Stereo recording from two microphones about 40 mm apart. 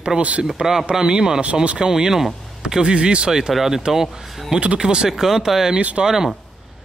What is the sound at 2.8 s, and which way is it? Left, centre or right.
Speech, right.